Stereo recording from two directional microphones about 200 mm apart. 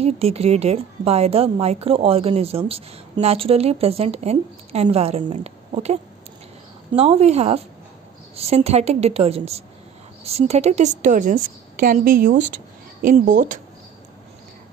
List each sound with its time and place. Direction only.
0.0 s a woman's voice: 30° right (ahead or behind)